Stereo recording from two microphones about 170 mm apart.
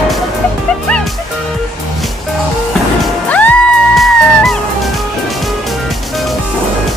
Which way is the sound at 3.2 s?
10° left (ahead or behind).